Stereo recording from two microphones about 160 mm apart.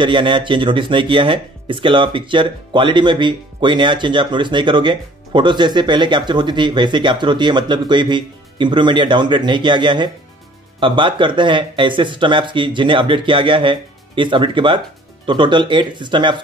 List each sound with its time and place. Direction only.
0.0 s speech: 30° right (ahead or behind)